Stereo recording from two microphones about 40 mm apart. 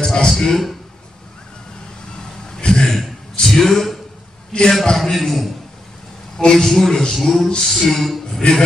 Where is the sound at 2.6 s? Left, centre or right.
Centre.